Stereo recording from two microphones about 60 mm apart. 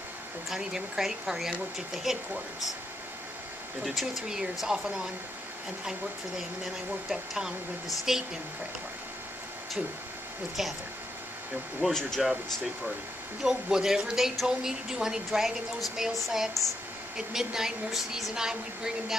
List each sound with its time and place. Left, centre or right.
0.5 s speech: centre
3.8 s speech: centre
10.6 s speech: centre
11.9 s speech: centre
13.4 s speech: centre